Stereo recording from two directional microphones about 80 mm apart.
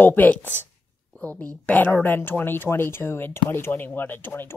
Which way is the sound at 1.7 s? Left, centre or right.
Left.